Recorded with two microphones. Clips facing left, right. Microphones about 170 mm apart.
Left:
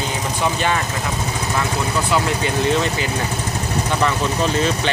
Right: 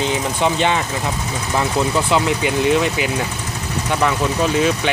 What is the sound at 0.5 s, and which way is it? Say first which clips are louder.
Speech: right 2 dB; 20° right (ahead or behind).